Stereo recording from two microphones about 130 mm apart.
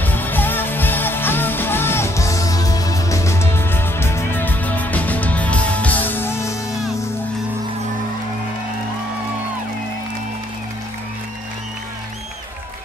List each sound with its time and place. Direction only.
0.0 s music: 15° left (ahead or behind)